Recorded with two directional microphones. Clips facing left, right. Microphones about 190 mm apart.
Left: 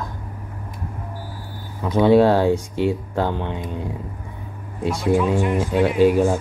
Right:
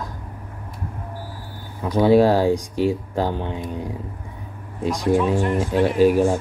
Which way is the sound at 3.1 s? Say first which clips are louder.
Even; 15° right (ahead or behind).